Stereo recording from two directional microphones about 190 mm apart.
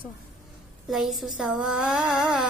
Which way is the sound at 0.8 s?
Centre (ahead or behind).